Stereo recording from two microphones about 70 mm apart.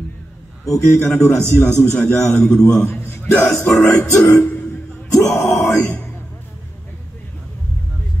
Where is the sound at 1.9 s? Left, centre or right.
Centre.